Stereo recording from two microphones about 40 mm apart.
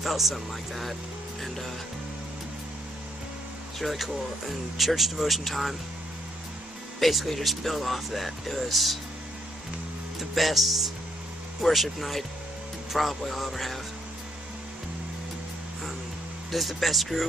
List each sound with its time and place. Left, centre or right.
0.0 s speech: centre
3.8 s speech: centre
7.0 s speech: centre
10.1 s speech: centre
16.5 s speech: centre